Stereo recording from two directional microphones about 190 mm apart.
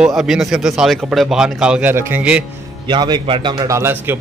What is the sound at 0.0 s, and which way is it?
A man's voice, centre (ahead or behind).